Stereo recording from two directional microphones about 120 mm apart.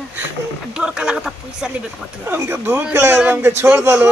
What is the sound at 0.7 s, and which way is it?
Speech, 5° right (ahead or behind).